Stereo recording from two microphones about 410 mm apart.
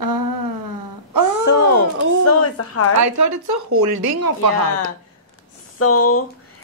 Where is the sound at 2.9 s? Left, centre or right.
Right.